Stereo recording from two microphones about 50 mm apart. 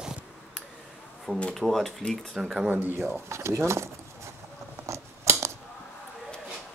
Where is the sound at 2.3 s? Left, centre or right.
Centre.